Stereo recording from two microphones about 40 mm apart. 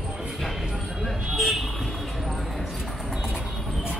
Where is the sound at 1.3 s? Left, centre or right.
Centre.